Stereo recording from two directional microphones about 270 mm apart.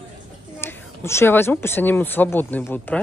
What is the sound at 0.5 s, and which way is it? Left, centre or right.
Speech, centre.